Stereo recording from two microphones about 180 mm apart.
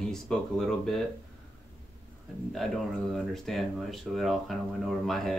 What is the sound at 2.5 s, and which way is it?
Speech, centre (ahead or behind).